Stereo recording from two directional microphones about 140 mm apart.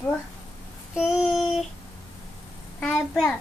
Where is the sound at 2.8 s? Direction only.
5° left (ahead or behind).